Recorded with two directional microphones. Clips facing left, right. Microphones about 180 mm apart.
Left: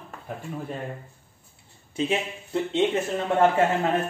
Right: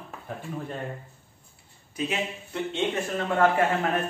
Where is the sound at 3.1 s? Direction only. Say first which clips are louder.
Right 1 dB; 25° left (ahead or behind).